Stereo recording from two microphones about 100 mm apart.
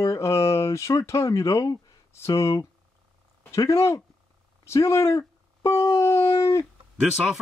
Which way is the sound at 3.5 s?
30° left (ahead or behind).